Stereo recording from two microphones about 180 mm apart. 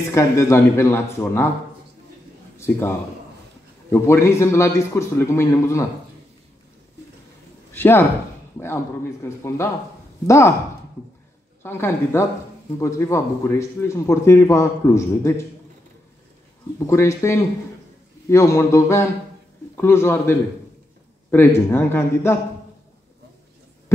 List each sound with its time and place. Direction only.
0.1 s speech: 15° left (ahead or behind)
3.9 s speech: 15° left (ahead or behind)
7.7 s speech: 10° left (ahead or behind)
11.6 s speech: 15° left (ahead or behind)
16.8 s speech: 15° left (ahead or behind)